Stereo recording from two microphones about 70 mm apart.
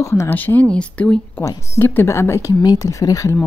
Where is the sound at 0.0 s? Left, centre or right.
Left.